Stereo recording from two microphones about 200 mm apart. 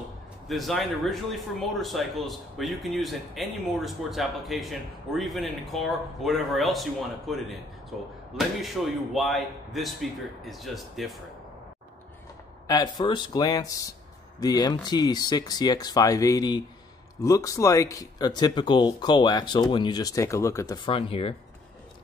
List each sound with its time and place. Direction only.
0.5 s speech: centre (ahead or behind)
12.6 s speech: 20° left (ahead or behind)